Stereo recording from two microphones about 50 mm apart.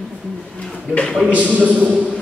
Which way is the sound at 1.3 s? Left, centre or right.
Right.